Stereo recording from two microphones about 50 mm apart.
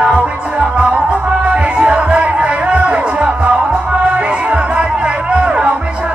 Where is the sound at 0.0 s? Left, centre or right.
Right.